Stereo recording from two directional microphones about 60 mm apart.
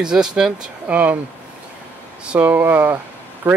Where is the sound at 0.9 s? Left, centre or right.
Right.